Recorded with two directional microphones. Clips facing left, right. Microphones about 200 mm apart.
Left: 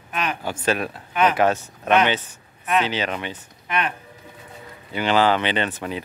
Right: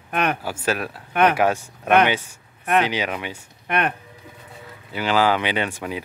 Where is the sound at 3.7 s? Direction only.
55° right (ahead or behind).